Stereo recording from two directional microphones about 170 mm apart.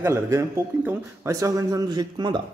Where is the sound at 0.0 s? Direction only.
15° right (ahead or behind).